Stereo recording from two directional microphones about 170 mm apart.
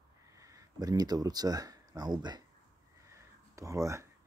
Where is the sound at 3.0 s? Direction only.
15° right (ahead or behind).